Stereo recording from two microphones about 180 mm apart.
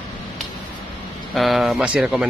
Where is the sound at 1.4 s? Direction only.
Centre (ahead or behind).